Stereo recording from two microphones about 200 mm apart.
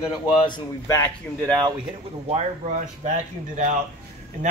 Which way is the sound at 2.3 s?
35° right (ahead or behind).